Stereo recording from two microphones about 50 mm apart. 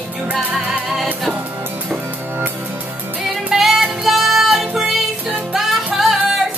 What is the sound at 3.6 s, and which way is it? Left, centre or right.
Music, centre.